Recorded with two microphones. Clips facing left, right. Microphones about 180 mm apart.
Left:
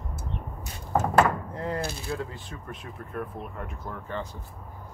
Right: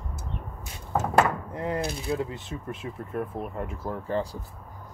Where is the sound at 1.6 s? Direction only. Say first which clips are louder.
Right 2 dB; 15° right (ahead or behind); by 4.4 s 35° right (ahead or behind).